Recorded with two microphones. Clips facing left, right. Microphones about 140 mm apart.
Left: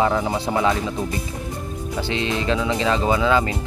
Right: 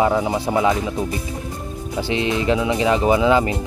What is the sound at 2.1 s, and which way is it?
Speech, 20° right (ahead or behind).